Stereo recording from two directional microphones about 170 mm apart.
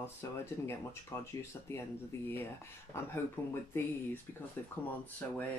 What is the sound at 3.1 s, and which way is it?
Speech, 15° left (ahead or behind).